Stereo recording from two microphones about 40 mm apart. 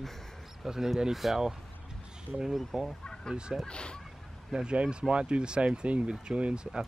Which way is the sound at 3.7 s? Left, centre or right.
Left.